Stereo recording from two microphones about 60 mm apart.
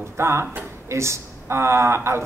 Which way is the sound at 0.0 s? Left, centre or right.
Right.